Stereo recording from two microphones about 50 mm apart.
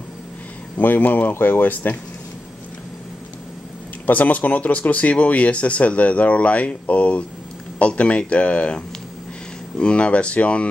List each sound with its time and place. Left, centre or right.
0.7 s speech: left
4.0 s speech: left